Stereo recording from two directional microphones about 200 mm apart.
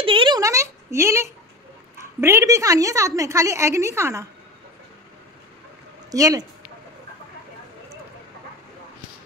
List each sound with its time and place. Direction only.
0.0 s a sound: 25° right (ahead or behind)
2.1 s a woman's voice: 15° right (ahead or behind)
6.1 s a woman's voice: 20° right (ahead or behind)